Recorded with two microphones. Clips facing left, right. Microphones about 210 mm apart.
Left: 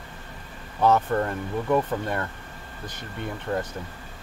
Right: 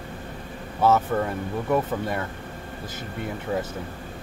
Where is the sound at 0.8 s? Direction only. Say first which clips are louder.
Even; 5° right (ahead or behind).